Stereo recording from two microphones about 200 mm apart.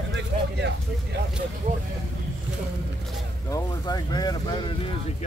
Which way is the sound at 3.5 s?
20° left (ahead or behind).